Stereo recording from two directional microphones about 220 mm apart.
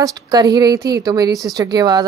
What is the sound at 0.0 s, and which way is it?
Speech, 15° right (ahead or behind).